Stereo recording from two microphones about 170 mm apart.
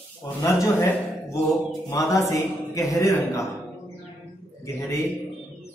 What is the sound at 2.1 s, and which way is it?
A man's voice, 20° left (ahead or behind).